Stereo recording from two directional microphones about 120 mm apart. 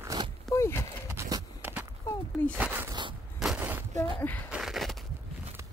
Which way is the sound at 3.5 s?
15° right (ahead or behind).